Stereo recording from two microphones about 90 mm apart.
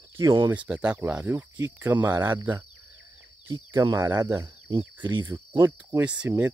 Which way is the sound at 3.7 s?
35° right (ahead or behind).